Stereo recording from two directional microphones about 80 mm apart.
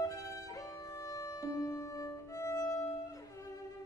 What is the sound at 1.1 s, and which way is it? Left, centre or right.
Music, left.